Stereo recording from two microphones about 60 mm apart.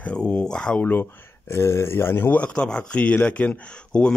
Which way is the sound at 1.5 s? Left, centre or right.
Left.